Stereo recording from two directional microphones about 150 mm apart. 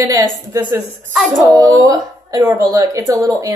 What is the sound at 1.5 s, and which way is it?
A woman's voice, 25° right (ahead or behind).